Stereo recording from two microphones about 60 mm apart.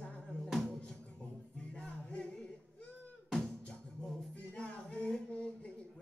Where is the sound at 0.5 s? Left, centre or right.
Centre.